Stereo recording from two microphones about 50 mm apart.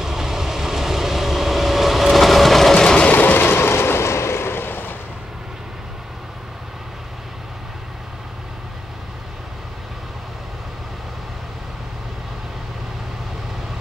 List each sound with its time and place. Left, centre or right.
0.0 s vehicle: centre
2.8 s train: centre
3.1 s vehicle: left